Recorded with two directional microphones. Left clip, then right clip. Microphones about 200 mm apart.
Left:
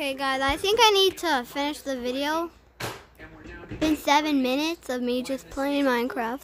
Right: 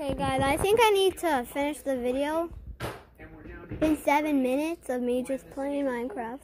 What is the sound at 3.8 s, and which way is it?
A woman's voice, 15° left (ahead or behind).